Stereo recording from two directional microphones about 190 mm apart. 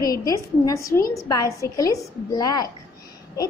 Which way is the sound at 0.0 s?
20° left (ahead or behind).